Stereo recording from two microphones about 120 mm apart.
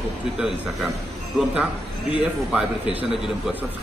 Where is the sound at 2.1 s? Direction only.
10° right (ahead or behind).